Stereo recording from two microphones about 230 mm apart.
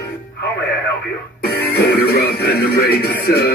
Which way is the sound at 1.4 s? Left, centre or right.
Left.